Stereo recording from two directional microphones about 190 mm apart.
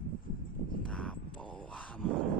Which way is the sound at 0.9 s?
5° left (ahead or behind).